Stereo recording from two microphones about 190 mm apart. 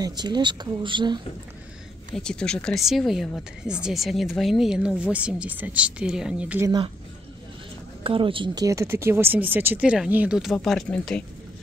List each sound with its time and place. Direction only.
0.0 s speech: 20° right (ahead or behind)
2.1 s speech: 5° left (ahead or behind)
8.0 s speech: 30° right (ahead or behind); by 11.2 s 5° left (ahead or behind)